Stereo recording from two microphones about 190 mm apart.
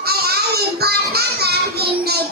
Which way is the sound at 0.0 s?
55° right (ahead or behind).